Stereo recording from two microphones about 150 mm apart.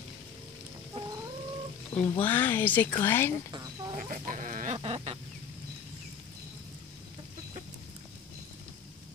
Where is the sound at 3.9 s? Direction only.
60° right (ahead or behind).